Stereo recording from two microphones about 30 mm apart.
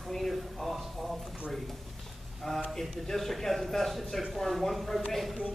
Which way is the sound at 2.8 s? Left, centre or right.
Centre.